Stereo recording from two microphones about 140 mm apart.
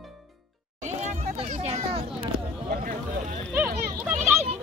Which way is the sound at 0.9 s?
55° right (ahead or behind).